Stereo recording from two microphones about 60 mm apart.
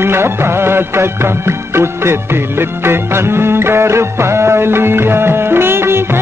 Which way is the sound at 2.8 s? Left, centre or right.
Right.